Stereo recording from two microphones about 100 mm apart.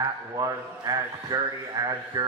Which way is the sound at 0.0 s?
40° right (ahead or behind).